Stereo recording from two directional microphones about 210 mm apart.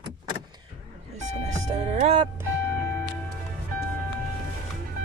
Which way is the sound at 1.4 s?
30° right (ahead or behind).